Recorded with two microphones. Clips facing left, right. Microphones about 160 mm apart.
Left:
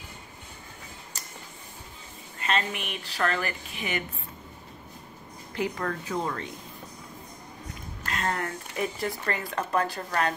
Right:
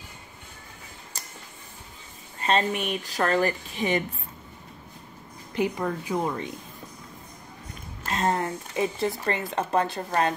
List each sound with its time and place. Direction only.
2.4 s speech: 35° right (ahead or behind)
5.5 s speech: 15° right (ahead or behind)
8.1 s speech: 25° right (ahead or behind)